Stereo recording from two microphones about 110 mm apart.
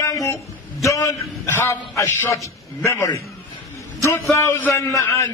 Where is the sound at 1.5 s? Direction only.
25° left (ahead or behind).